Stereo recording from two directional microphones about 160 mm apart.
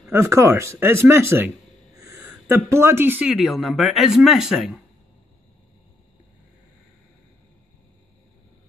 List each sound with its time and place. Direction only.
0.1 s speech: 15° right (ahead or behind)